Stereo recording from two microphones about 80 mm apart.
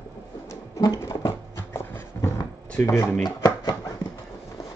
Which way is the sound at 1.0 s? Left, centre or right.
Left.